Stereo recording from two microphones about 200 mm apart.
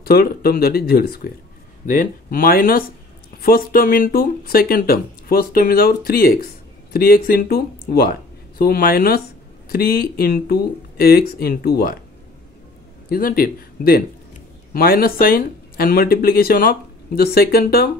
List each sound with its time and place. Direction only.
0.0 s speech: 50° left (ahead or behind)
13.1 s speech: 45° left (ahead or behind)